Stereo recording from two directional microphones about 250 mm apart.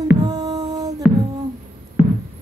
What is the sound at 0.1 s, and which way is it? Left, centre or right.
Heart sounds, centre.